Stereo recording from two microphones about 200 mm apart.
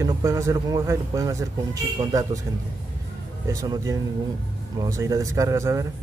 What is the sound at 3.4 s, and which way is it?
Speech, 15° right (ahead or behind).